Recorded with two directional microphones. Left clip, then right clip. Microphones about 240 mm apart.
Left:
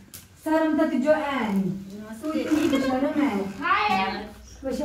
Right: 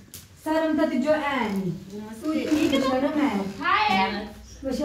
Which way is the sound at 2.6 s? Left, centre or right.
Centre.